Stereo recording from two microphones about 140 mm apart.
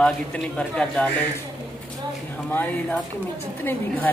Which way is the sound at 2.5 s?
10° left (ahead or behind).